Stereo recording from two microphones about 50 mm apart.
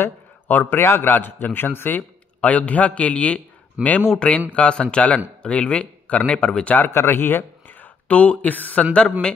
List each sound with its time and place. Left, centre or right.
0.0 s a sound: left
0.7 s a man's voice: left
3.8 s speech: right
4.2 s speech: left
6.9 s a man's voice: left
8.1 s a man's voice: left